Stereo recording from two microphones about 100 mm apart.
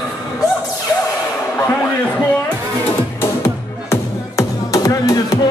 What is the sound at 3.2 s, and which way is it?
Music, 25° left (ahead or behind).